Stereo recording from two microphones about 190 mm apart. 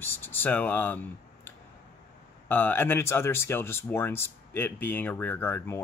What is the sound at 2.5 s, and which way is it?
Speech, 10° left (ahead or behind).